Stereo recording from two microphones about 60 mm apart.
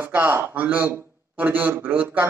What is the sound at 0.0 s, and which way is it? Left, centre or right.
A man's voice, right.